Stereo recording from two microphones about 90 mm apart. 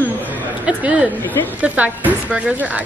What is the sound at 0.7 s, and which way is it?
A woman's voice, 15° right (ahead or behind).